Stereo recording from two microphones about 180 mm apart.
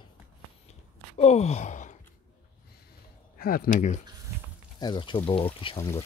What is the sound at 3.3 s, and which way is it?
Speech, 55° left (ahead or behind).